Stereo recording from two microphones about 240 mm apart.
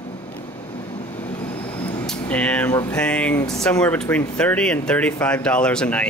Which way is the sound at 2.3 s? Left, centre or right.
Centre.